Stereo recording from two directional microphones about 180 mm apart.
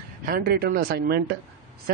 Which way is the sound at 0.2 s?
55° right (ahead or behind).